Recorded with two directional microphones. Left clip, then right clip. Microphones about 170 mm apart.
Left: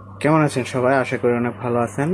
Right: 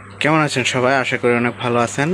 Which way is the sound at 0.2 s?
Centre (ahead or behind).